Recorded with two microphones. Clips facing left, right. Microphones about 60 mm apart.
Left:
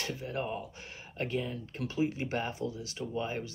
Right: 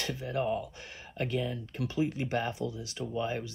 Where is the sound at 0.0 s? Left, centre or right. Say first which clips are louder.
Right 3 dB; left.